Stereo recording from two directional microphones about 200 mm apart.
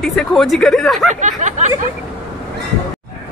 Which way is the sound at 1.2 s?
35° right (ahead or behind).